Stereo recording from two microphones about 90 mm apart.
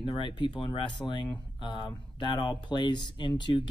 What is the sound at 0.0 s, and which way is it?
Speech, 65° left (ahead or behind).